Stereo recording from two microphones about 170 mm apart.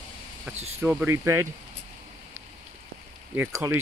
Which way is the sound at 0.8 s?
10° right (ahead or behind).